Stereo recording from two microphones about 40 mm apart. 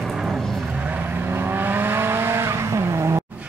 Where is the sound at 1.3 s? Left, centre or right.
Right.